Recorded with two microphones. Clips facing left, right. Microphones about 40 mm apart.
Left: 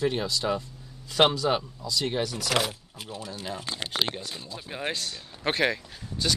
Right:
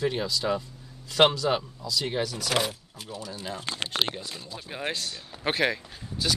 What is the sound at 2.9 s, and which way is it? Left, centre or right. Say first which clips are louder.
Speech: even; left.